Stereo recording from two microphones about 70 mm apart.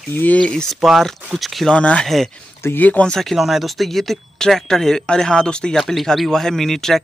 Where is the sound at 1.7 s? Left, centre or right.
Centre.